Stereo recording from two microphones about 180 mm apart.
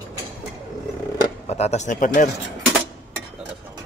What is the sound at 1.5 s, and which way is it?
Speech, 35° left (ahead or behind).